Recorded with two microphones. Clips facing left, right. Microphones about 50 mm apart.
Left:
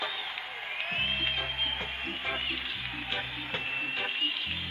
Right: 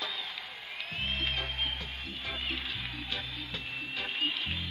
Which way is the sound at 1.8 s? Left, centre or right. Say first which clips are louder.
Left 5 dB; left.